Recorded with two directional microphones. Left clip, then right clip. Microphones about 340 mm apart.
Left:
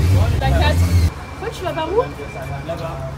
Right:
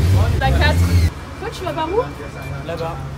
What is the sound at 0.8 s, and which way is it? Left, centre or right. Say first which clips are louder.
Speech: right 1 dB; centre.